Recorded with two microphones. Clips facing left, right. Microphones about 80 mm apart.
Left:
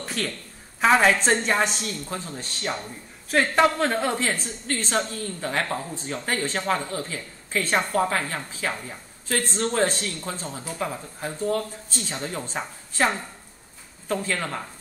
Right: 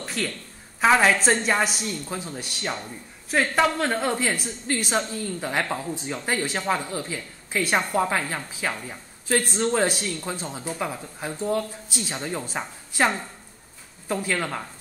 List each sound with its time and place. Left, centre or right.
0.0 s a sound: centre
0.7 s a woman's voice: centre
4.2 s a woman's voice: centre
12.2 s a woman's voice: centre